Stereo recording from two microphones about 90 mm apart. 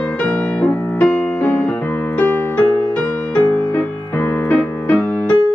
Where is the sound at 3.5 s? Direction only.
25° left (ahead or behind).